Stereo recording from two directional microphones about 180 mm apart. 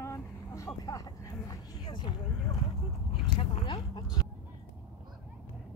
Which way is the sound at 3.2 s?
25° left (ahead or behind).